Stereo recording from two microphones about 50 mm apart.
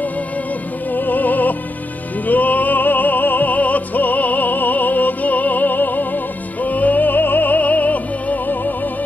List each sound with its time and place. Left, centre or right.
0.9 s music: left